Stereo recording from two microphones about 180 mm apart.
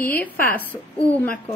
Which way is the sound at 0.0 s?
10° left (ahead or behind).